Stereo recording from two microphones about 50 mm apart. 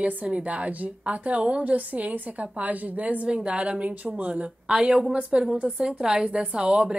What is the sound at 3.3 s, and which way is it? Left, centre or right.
Speech, right.